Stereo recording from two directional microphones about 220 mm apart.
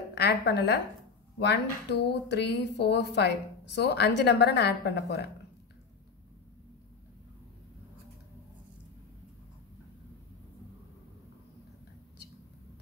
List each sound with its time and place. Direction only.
0.1 s a woman's voice: 50° left (ahead or behind)